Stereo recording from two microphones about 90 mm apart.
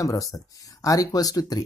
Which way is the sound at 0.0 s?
40° left (ahead or behind).